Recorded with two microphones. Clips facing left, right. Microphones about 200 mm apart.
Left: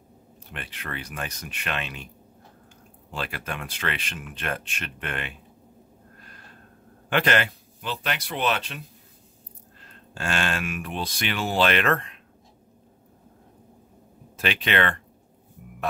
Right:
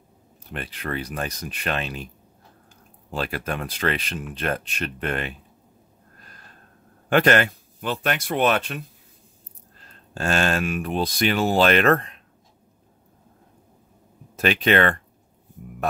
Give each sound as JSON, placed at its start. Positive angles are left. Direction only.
{"t": 0.5, "sound": "speech", "side_deg": -40}
{"t": 3.1, "sound": "speech", "side_deg": -40}
{"t": 7.1, "sound": "speech", "side_deg": -45}
{"t": 10.1, "sound": "speech", "side_deg": -40}
{"t": 14.3, "sound": "speech", "side_deg": -45}